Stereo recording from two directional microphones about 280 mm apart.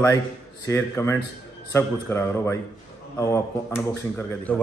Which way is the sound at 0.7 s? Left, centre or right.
Centre.